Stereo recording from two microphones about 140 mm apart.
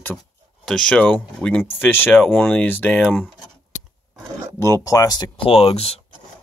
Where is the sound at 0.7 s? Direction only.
5° left (ahead or behind).